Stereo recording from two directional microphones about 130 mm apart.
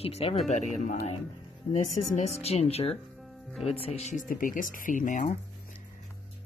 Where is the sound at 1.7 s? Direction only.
60° left (ahead or behind); by 5.2 s 85° left.